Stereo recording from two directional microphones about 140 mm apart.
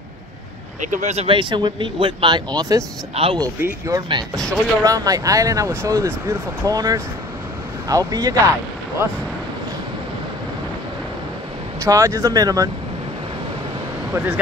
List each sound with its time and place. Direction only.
0.7 s speech: 65° right (ahead or behind)
1.2 s speech: 35° right (ahead or behind)
3.2 s speech: 40° right (ahead or behind)
3.6 s speech: 20° right (ahead or behind)
4.4 s speech: 5° left (ahead or behind)
4.8 s speech: 25° right (ahead or behind)
11.8 s speech: 20° right (ahead or behind)
14.1 s speech: 10° right (ahead or behind)